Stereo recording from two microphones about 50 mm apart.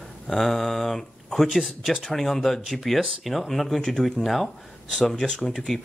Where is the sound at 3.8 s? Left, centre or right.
Centre.